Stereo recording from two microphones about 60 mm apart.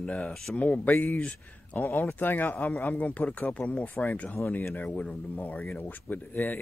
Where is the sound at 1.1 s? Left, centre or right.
Centre.